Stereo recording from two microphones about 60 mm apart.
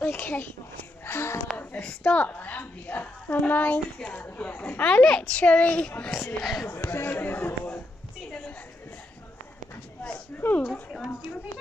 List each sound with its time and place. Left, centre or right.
0.0 s speech: left
1.0 s wheeze: left
1.8 s a sound: centre
2.2 s a woman's voice: left
6.1 s speech: centre
6.7 s speech: left
8.3 s a sound: centre
10.4 s speech: left
10.9 s a woman's voice: centre